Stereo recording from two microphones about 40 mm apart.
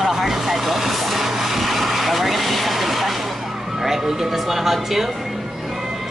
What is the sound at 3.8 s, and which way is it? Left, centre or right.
Speech, centre.